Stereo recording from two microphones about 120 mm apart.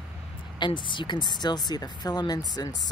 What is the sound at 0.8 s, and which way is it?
Speech, 40° left (ahead or behind).